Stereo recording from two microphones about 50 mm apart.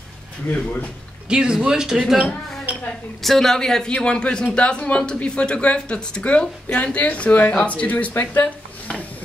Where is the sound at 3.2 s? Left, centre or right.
Centre; by 8.5 s left.